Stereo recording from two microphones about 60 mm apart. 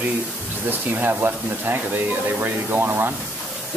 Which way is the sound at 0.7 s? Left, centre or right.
Right.